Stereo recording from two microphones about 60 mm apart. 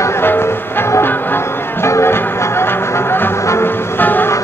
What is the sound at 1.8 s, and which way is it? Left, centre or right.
Music, left.